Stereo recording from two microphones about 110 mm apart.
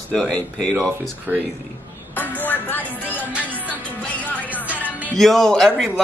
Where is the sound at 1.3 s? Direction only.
15° right (ahead or behind).